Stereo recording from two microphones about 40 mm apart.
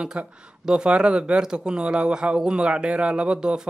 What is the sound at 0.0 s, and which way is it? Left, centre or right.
Speech, right.